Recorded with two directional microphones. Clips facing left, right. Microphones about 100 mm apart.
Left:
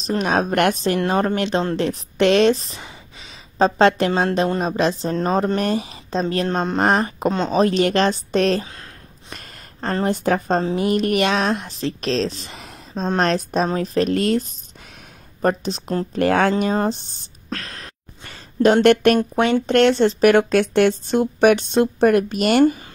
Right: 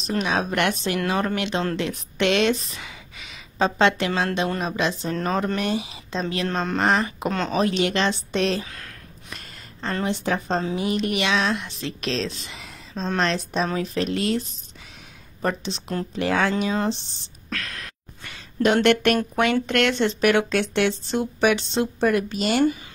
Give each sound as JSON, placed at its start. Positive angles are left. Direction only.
{"t": 0.0, "sound": "a woman's voice", "side_deg": 40}
{"t": 0.9, "sound": "a woman's voice", "side_deg": 35}
{"t": 15.4, "sound": "a woman's voice", "side_deg": 45}
{"t": 17.5, "sound": "a sound", "side_deg": 30}
{"t": 19.1, "sound": "speech", "side_deg": 25}
{"t": 19.6, "sound": "a woman's voice", "side_deg": 35}